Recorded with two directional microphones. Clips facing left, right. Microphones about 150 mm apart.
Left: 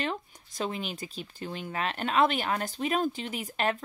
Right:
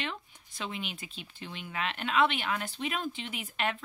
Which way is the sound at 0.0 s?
40° left (ahead or behind).